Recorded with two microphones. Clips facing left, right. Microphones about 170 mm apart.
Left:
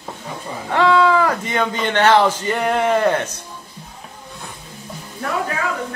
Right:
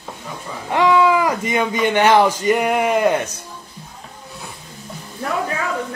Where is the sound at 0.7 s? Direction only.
15° right (ahead or behind).